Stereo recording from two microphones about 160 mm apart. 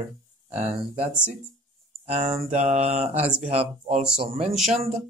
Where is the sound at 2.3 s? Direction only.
45° right (ahead or behind).